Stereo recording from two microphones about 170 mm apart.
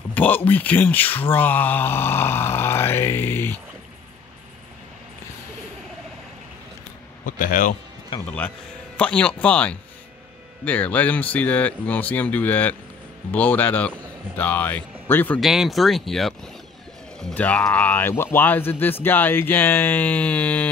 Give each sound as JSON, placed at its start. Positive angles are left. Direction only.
{"t": 0.1, "sound": "a sound", "side_deg": 10}
{"t": 0.5, "sound": "speech", "side_deg": 10}
{"t": 7.2, "sound": "a man's voice", "side_deg": 50}
{"t": 8.1, "sound": "speech", "side_deg": 30}
{"t": 8.9, "sound": "speech", "side_deg": 5}
{"t": 15.4, "sound": "speech", "side_deg": 0}